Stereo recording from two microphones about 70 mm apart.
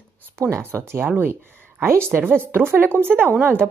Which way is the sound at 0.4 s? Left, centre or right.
Right.